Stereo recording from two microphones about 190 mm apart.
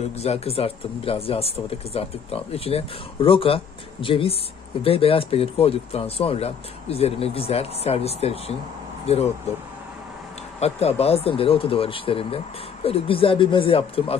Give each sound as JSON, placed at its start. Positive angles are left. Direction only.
{"t": 0.2, "sound": "speech", "side_deg": 35}
{"t": 10.6, "sound": "speech", "side_deg": 35}